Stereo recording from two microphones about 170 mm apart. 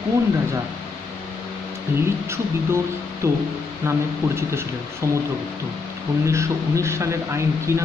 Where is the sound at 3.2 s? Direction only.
15° right (ahead or behind).